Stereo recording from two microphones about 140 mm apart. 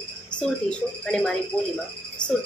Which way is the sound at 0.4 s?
5° left (ahead or behind).